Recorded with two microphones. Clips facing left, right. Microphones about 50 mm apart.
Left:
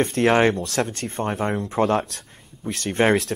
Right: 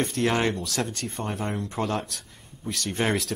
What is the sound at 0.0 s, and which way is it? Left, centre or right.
Speech, left.